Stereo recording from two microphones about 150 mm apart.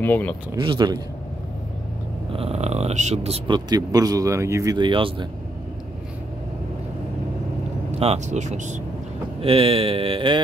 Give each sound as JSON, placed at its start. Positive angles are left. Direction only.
{"t": 0.0, "sound": "speech", "side_deg": 10}
{"t": 0.6, "sound": "speech", "side_deg": -30}
{"t": 2.3, "sound": "speech", "side_deg": -40}
{"t": 3.5, "sound": "speech", "side_deg": -25}
{"t": 4.7, "sound": "a sound", "side_deg": -35}
{"t": 7.9, "sound": "speech", "side_deg": -45}
{"t": 9.4, "sound": "a sound", "side_deg": -40}